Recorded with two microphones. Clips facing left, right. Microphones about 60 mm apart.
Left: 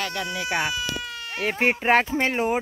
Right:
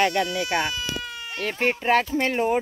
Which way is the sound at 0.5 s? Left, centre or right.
Centre.